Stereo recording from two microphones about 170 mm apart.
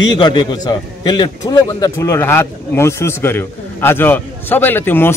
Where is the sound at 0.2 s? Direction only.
25° left (ahead or behind).